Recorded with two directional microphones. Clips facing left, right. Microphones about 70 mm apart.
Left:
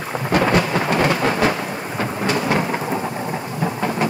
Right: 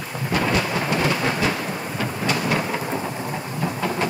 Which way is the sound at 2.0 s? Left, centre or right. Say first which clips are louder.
Left 4 dB; left.